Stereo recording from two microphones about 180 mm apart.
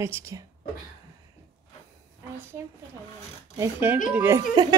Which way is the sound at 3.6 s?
10° right (ahead or behind).